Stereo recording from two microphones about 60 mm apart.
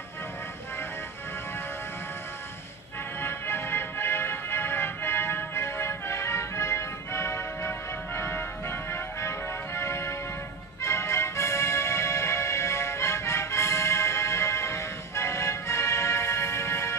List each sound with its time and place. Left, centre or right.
3.2 s music: left